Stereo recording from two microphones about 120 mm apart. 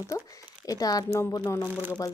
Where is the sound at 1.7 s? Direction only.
15° right (ahead or behind).